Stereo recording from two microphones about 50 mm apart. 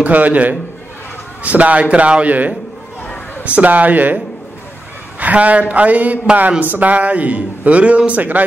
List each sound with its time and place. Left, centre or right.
0.0 s a man's voice: right
5.2 s a man's voice: right